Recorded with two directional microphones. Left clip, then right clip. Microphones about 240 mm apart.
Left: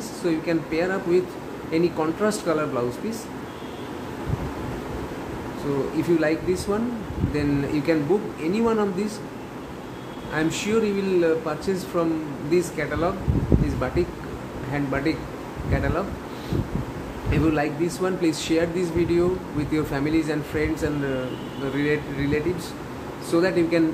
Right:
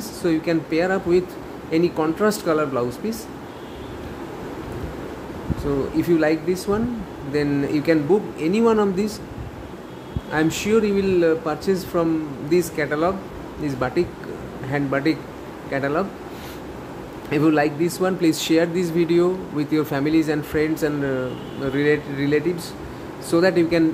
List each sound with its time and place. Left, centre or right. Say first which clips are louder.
0.2 s speech: right 3 dB; right
6.0 s speech: right 3 dB; right
10.3 s speech: right 4 dB; right
17.3 s speech: right 5 dB; right